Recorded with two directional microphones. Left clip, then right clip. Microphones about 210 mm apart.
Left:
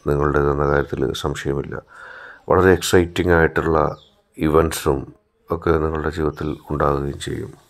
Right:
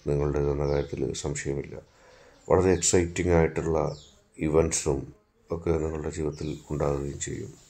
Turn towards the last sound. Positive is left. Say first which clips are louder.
# left 9 dB
turn(degrees=20)  # may be behind; listen again after turning